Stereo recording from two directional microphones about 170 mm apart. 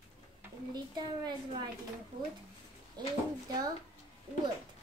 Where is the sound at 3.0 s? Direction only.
25° right (ahead or behind).